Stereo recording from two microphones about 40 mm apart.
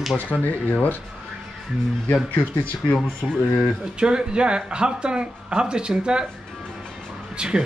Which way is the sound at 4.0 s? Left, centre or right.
Right.